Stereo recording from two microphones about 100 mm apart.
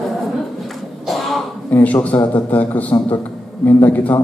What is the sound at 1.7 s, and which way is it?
A man's voice, 15° left (ahead or behind).